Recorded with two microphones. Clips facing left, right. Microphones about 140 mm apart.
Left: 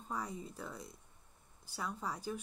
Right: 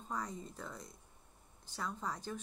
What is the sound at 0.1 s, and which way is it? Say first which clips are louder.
A woman's voice: even; 5° left (ahead or behind).